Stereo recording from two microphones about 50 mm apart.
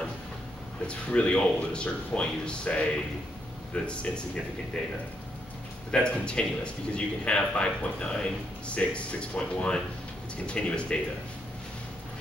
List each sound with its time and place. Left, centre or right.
0.8 s a man's voice: left